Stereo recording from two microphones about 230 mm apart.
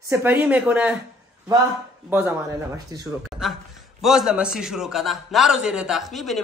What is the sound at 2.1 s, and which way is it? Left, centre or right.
Speech, centre.